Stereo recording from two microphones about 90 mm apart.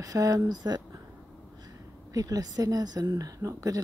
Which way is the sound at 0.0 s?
40° right (ahead or behind).